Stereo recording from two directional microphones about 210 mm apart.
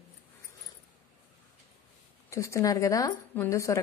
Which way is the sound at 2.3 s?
15° left (ahead or behind).